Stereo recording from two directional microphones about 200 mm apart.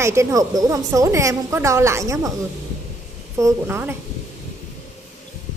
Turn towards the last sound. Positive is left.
turn(degrees=-10)  # may be behind; listen again after turning